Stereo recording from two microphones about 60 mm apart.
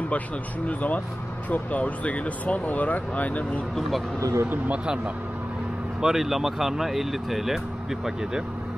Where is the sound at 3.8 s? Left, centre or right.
Centre.